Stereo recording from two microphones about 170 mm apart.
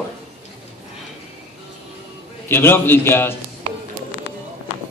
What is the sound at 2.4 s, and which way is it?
Speech, 15° left (ahead or behind).